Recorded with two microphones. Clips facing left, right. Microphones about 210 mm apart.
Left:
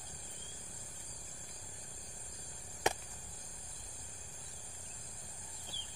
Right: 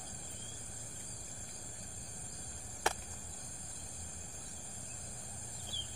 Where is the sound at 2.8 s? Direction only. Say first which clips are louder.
Left 2 dB; 15° left (ahead or behind).